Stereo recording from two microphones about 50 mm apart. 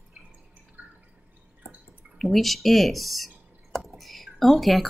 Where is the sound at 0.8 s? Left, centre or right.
Right.